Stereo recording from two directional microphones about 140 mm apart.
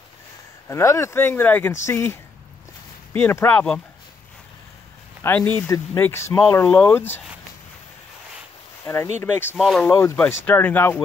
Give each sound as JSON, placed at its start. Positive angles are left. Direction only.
{"t": 0.7, "sound": "speech", "side_deg": 20}
{"t": 5.2, "sound": "speech", "side_deg": 10}
{"t": 8.8, "sound": "speech", "side_deg": 20}
{"t": 9.6, "sound": "speech", "side_deg": 0}
{"t": 9.8, "sound": "speech", "side_deg": 20}